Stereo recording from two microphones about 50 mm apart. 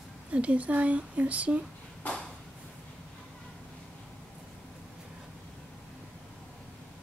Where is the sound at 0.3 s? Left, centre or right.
Right.